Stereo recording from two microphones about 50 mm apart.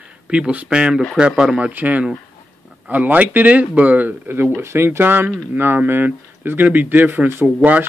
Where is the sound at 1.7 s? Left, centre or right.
Right.